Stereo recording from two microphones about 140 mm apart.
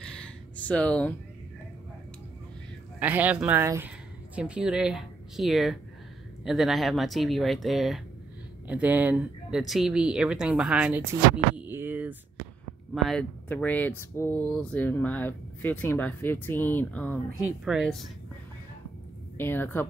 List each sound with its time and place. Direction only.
0.0 s a sound: 5° left (ahead or behind)
3.0 s speech: 10° right (ahead or behind)
4.4 s speech: 5° right (ahead or behind)
11.3 s a sound: 10° right (ahead or behind)
12.9 s speech: 5° left (ahead or behind)
17.5 s speech: centre (ahead or behind)
19.3 s speech: 15° left (ahead or behind)